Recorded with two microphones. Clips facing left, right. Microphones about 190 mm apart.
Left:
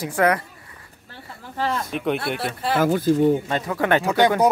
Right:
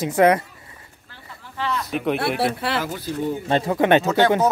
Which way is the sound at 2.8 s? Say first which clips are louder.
Left 9 dB; 50° left (ahead or behind).